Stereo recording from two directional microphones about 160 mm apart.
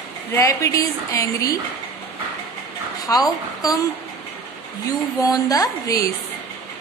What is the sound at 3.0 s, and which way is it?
Speech, 25° left (ahead or behind).